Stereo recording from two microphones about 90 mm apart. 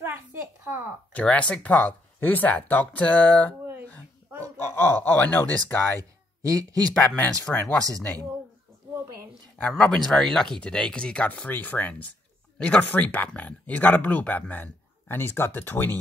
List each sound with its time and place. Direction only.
0.0 s a sound: 25° right (ahead or behind)
1.1 s speech: 15° left (ahead or behind)
4.6 s speech: 25° left (ahead or behind)
5.9 s speech: 40° right (ahead or behind)
7.1 s speech: 10° left (ahead or behind)
9.8 s speech: 5° left (ahead or behind); by 16.0 s 25° left (ahead or behind)